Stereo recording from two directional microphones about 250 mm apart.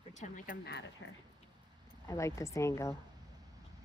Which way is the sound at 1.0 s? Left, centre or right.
Left.